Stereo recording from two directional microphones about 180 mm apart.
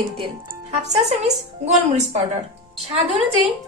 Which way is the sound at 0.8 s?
40° right (ahead or behind).